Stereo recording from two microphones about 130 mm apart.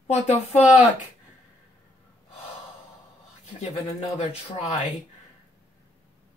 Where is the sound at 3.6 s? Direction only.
60° left (ahead or behind).